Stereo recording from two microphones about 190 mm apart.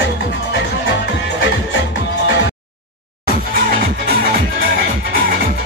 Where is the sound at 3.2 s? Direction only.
50° right (ahead or behind).